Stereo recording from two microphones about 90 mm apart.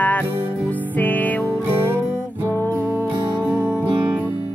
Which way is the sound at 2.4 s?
25° left (ahead or behind).